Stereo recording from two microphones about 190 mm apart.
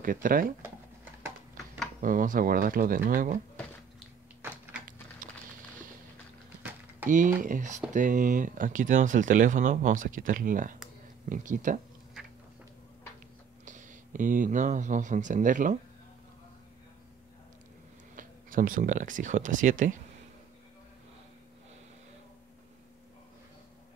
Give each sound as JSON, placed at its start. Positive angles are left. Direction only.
{"t": 0.0, "sound": "speech", "side_deg": -45}
{"t": 2.0, "sound": "speech", "side_deg": -45}
{"t": 4.4, "sound": "a sound", "side_deg": -10}
{"t": 5.2, "sound": "a sound", "side_deg": -45}
{"t": 7.1, "sound": "speech", "side_deg": -40}
{"t": 13.7, "sound": "speech", "side_deg": -40}
{"t": 18.1, "sound": "speech", "side_deg": -45}